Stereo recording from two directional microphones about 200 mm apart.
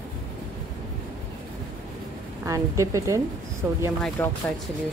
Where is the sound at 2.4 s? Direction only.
15° right (ahead or behind).